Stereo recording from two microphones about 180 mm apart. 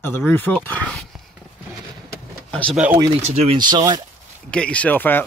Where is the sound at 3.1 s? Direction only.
35° right (ahead or behind).